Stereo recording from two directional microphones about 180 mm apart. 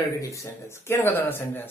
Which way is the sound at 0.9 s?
10° left (ahead or behind).